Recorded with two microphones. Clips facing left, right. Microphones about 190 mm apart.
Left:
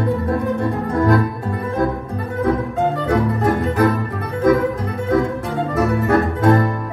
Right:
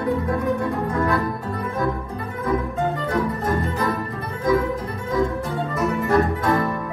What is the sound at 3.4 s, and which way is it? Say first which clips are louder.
Music: left 6 dB; 70° left (ahead or behind).